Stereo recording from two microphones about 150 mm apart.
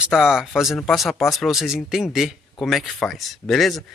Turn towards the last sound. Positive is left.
turn(degrees=0)  # may be behind; listen again after turning